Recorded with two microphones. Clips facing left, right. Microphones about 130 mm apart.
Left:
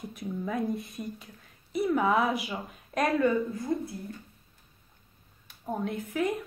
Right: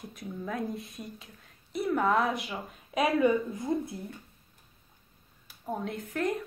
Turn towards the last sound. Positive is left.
turn(degrees=0)  # may be behind; listen again after turning